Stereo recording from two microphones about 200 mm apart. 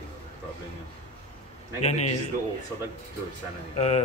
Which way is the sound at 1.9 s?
35° left (ahead or behind).